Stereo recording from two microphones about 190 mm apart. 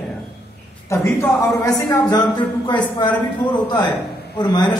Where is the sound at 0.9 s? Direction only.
15° left (ahead or behind).